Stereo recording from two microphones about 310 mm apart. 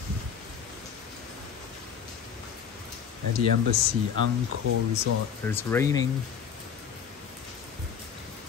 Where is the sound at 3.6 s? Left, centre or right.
Right.